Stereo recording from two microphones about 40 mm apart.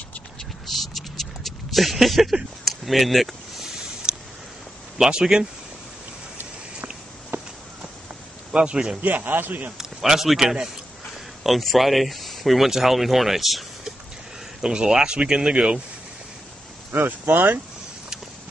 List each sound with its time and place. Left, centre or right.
0.7 s a sound: centre
4.0 s a sound: centre
4.9 s speech: centre
8.5 s speech: right
9.0 s a man's voice: right
9.8 s a man's voice: centre
11.4 s speech: centre
14.6 s speech: centre
16.9 s speech: right